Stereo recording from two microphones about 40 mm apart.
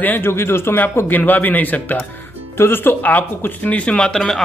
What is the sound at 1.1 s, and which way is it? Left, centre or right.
Speech, left.